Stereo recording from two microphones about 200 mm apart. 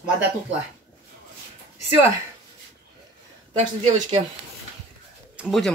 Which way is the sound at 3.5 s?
35° right (ahead or behind).